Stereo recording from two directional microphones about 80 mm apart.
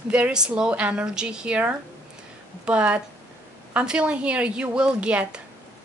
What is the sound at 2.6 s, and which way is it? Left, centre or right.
Speech, centre.